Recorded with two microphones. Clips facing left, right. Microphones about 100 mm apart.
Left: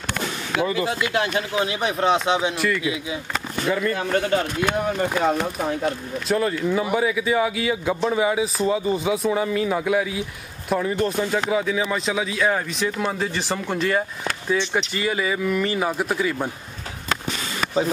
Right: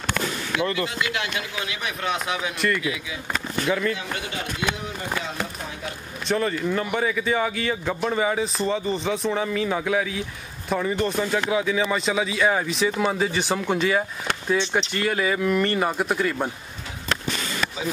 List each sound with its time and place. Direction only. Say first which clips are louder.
0.8 s speech: left 5 dB; 40° left (ahead or behind)
2.5 s speech: left 1 dB; centre (ahead or behind)
2.8 s speech: left 3 dB; 25° left (ahead or behind)
3.6 s speech: left 1 dB; centre (ahead or behind)
3.9 s speech: left 9 dB; 45° left (ahead or behind)
6.2 s speech: left 2 dB; centre (ahead or behind)